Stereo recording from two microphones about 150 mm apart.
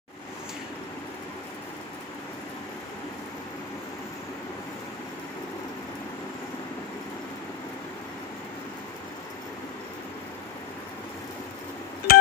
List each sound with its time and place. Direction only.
12.1 s telephone dialing: 75° left (ahead or behind)